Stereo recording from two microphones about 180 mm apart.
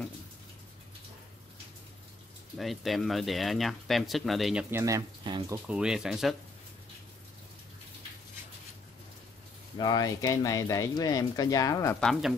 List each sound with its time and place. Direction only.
2.5 s speech: centre (ahead or behind)
4.6 s speech: 15° right (ahead or behind)
5.7 s speech: 5° right (ahead or behind)
9.8 s speech: 20° left (ahead or behind)
12.0 s speech: centre (ahead or behind)